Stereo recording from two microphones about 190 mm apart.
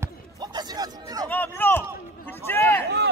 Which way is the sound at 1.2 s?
10° left (ahead or behind).